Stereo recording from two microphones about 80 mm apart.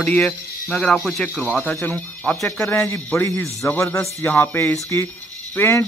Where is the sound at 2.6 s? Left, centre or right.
Left.